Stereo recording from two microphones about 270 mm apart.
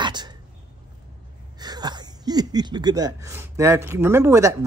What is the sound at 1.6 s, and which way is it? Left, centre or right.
Speech, centre.